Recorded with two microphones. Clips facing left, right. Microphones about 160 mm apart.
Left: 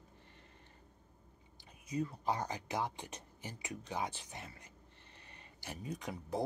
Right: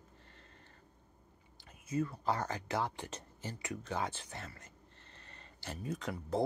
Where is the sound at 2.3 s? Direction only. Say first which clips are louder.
Right 2 dB; 15° left (ahead or behind).